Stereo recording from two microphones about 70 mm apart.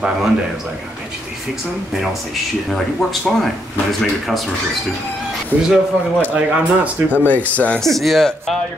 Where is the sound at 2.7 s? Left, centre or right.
Centre.